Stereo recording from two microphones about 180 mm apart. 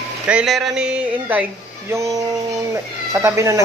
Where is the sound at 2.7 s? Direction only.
15° right (ahead or behind).